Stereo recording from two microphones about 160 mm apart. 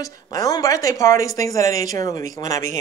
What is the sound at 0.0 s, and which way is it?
Speech, 20° left (ahead or behind).